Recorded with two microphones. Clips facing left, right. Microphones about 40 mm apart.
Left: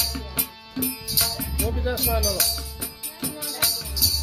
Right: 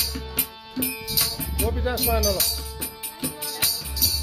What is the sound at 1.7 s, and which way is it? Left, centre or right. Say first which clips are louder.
Music: right 1 dB; centre.